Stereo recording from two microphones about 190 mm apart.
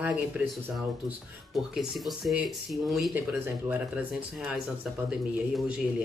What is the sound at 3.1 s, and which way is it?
Speech, 10° right (ahead or behind).